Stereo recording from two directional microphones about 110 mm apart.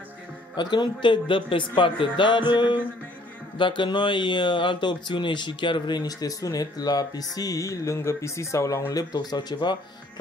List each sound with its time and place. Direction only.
0.6 s speech: 45° left (ahead or behind)